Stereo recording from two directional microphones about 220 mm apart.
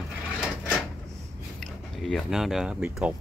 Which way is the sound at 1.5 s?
Centre (ahead or behind).